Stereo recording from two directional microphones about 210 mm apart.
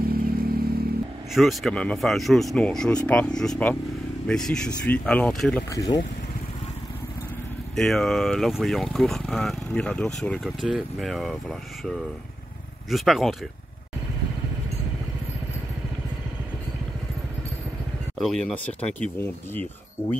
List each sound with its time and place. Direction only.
0.1 s vehicle: 45° right (ahead or behind)
1.3 s speech: centre (ahead or behind)
5.7 s speech: 15° left (ahead or behind)
7.7 s speech: centre (ahead or behind)
12.9 s speech: centre (ahead or behind)
18.1 s speech: centre (ahead or behind)